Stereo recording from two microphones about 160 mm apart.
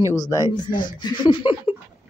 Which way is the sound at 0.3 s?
25° left (ahead or behind).